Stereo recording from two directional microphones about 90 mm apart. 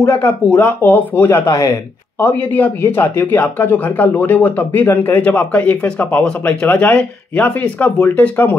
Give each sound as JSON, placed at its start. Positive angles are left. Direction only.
{"t": 0.2, "sound": "speech", "side_deg": 15}
{"t": 1.5, "sound": "speech", "side_deg": 40}
{"t": 2.1, "sound": "speech", "side_deg": 20}